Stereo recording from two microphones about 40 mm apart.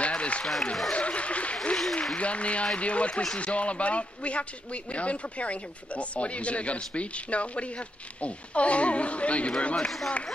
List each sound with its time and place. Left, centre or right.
0.0 s a sound: left
0.9 s applause: left
2.1 s speech: left
9.8 s speech: centre